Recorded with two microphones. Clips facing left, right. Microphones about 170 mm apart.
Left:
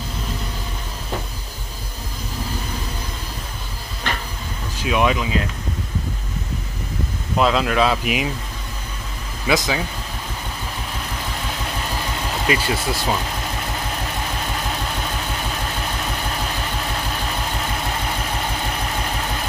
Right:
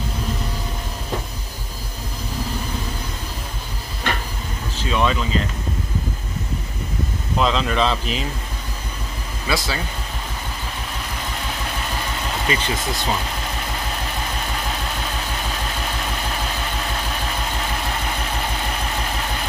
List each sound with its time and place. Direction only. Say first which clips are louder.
4.7 s speech: left 2 dB; 10° left (ahead or behind)
7.3 s speech: left 2 dB; 5° left (ahead or behind)
9.5 s speech: left 4 dB; 20° left (ahead or behind)
12.4 s speech: left 3 dB; 10° left (ahead or behind)